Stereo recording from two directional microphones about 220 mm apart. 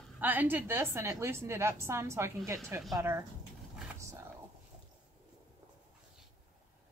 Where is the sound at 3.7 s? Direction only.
10° right (ahead or behind).